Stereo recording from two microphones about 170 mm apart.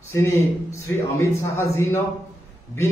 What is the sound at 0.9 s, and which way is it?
A man's voice, 15° left (ahead or behind).